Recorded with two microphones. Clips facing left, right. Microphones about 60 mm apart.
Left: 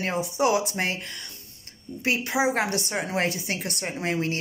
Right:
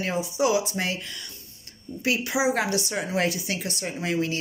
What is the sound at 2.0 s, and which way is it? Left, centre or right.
Speech, left.